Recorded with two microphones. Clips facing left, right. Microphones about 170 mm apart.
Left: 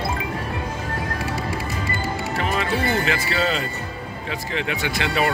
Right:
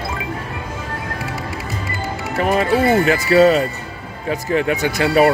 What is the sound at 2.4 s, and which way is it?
Speech, 45° right (ahead or behind).